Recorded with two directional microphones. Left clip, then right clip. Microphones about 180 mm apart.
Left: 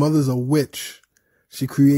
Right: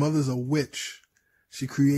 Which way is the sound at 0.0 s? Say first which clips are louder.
Left 7 dB; 25° left (ahead or behind).